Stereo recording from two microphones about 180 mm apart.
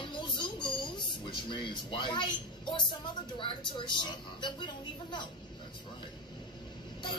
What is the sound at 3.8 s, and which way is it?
A woman's voice, 25° left (ahead or behind).